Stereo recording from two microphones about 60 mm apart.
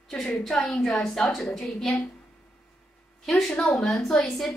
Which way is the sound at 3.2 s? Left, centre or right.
Centre.